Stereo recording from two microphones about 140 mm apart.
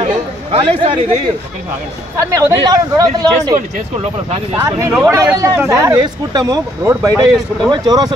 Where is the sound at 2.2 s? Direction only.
20° right (ahead or behind).